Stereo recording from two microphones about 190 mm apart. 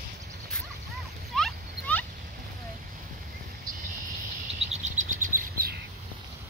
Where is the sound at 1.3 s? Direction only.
5° left (ahead or behind).